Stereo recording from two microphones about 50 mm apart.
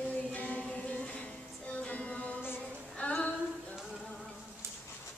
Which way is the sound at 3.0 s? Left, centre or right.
Left.